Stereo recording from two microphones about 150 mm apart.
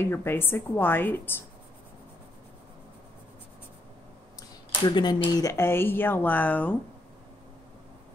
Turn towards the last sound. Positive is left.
turn(degrees=10)  # may be behind; listen again after turning